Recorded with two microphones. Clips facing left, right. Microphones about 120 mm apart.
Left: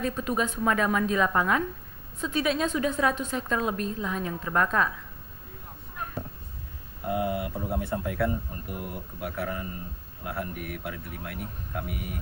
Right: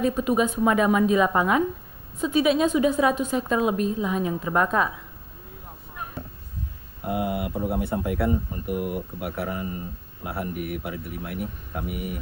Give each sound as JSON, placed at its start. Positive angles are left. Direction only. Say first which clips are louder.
{"t": 0.0, "sound": "a woman's voice", "louder": "right 6 dB", "side_deg": -10}
{"t": 7.1, "sound": "a woman's voice", "louder": "right 2 dB", "side_deg": -15}